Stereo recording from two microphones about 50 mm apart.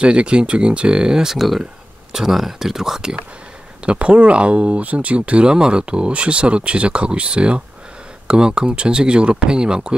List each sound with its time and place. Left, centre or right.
0.0 s speech: right
3.8 s speech: right